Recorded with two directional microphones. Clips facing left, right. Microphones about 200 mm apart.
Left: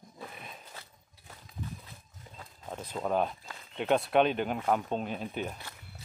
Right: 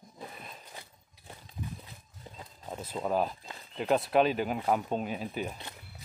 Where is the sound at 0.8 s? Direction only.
25° right (ahead or behind).